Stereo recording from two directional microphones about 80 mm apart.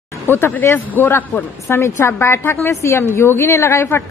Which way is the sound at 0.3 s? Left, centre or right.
Left.